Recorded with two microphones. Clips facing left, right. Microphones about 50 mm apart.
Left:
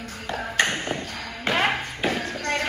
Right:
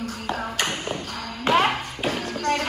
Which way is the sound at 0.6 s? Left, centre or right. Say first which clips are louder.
Left 3 dB; left.